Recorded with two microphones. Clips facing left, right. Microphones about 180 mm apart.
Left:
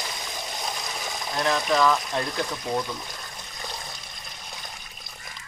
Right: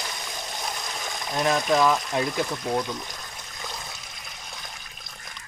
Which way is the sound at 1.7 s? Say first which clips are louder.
Left 1 dB; 15° right (ahead or behind).